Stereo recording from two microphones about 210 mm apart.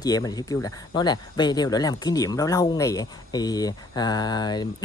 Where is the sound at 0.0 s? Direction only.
15° left (ahead or behind).